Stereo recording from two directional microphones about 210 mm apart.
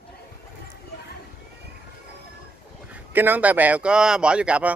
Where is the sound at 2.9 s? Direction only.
10° right (ahead or behind).